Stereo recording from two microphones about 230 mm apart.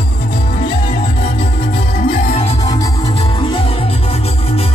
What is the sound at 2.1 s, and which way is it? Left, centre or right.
Music, left.